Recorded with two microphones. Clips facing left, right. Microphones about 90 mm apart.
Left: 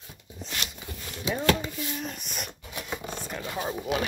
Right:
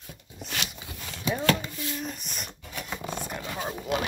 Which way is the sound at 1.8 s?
5° left (ahead or behind).